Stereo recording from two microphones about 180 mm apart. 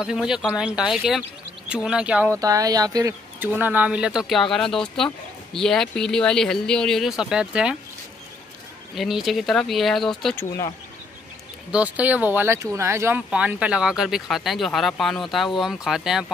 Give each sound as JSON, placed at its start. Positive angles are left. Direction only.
{"t": 0.0, "sound": "speech", "side_deg": -5}
{"t": 2.3, "sound": "speech", "side_deg": -20}
{"t": 8.9, "sound": "speech", "side_deg": 0}
{"t": 10.3, "sound": "speech", "side_deg": 15}
{"t": 11.7, "sound": "speech", "side_deg": -10}